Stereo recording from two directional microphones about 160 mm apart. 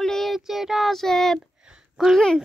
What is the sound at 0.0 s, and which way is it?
Child singing, centre (ahead or behind).